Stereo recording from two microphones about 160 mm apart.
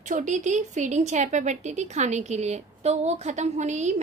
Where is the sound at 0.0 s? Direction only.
50° right (ahead or behind).